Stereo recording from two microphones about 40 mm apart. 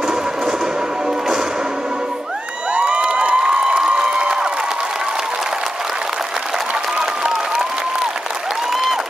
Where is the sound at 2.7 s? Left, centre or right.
Right.